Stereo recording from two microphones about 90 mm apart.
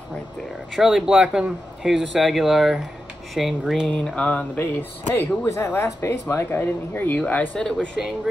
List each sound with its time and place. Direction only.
0.7 s a man's voice: 5° right (ahead or behind)
3.9 s a sound: 15° left (ahead or behind)
4.6 s speech: 25° left (ahead or behind)